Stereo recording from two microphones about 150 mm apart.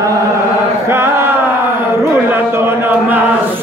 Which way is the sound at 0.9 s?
15° right (ahead or behind).